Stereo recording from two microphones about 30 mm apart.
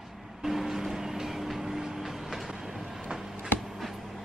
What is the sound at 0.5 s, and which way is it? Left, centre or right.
Music, centre.